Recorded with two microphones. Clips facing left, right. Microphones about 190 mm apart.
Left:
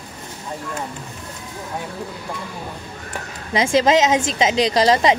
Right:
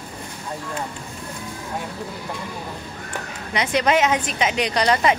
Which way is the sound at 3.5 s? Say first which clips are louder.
Left 4 dB; 25° left (ahead or behind).